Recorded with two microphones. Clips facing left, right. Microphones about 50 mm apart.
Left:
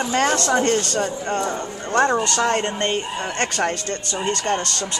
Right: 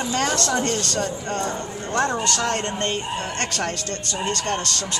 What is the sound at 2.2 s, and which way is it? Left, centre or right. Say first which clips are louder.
Speech: left 3 dB; centre.